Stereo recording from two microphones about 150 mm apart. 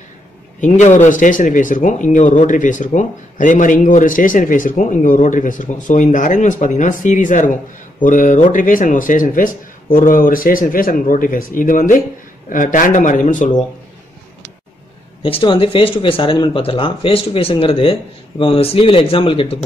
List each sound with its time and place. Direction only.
0.6 s speech: 55° left (ahead or behind)
15.2 s speech: 35° left (ahead or behind)